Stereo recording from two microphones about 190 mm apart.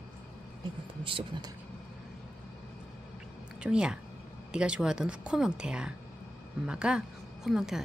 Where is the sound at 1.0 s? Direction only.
25° right (ahead or behind).